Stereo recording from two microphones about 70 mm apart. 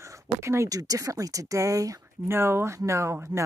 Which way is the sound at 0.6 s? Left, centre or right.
Right.